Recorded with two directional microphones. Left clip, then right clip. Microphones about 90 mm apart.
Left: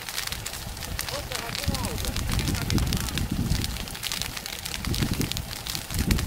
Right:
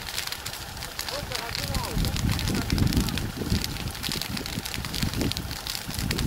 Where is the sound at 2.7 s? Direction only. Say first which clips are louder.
Right 1 dB; 20° right (ahead or behind).